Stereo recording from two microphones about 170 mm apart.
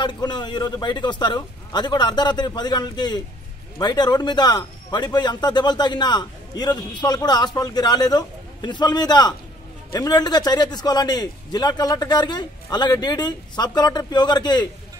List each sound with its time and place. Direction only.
0.0 s a man's voice: 25° left (ahead or behind)